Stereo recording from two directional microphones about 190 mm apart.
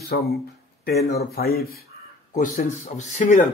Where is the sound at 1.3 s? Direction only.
55° left (ahead or behind).